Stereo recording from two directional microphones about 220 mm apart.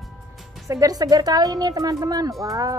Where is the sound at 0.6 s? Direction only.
15° right (ahead or behind).